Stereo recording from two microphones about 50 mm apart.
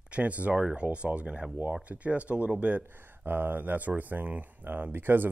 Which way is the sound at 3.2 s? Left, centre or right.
Right.